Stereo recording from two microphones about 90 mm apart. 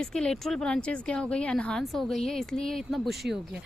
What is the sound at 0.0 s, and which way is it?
Speech, 10° left (ahead or behind).